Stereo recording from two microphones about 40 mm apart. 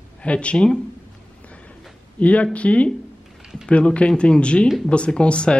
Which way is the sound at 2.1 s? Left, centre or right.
Left.